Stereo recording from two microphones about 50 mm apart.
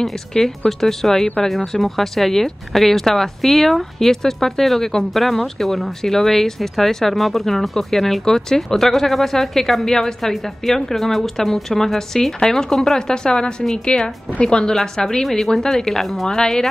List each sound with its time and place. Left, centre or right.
0.0 s a woman's voice: centre
15.2 s a woman's voice: centre